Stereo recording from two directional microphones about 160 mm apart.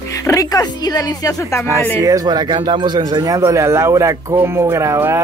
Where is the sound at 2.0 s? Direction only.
20° right (ahead or behind).